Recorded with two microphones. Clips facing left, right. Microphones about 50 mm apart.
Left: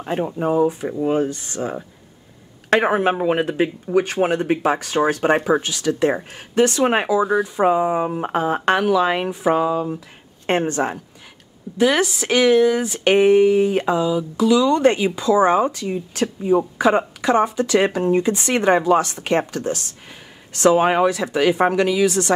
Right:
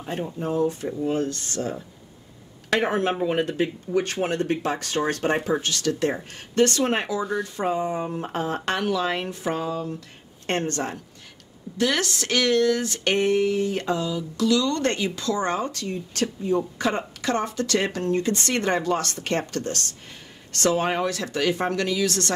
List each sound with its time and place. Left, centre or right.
0.0 s speech: left
0.5 s speech: centre
2.8 s speech: centre